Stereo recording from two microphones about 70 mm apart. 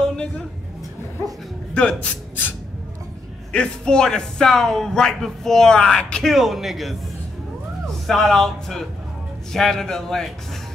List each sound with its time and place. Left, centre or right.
0.0 s a sound: centre
1.8 s speech: centre
3.5 s speech: centre
6.3 s a man's voice: centre
8.1 s a man's voice: centre